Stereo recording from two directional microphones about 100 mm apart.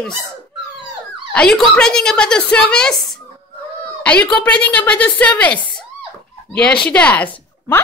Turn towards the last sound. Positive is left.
turn(degrees=15)  # may be behind; listen again after turning